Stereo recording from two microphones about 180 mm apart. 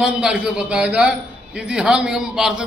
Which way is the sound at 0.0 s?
5° right (ahead or behind).